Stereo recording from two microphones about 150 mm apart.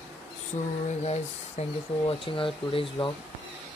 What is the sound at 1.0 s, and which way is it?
Speech, 45° left (ahead or behind).